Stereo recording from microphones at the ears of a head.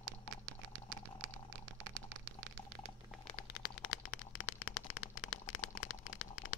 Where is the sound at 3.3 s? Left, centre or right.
Left.